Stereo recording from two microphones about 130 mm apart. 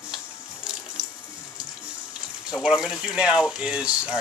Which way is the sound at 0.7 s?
5° right (ahead or behind).